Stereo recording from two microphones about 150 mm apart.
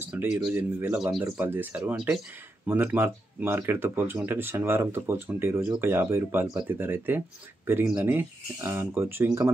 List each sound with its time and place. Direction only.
0.1 s speech: 5° right (ahead or behind)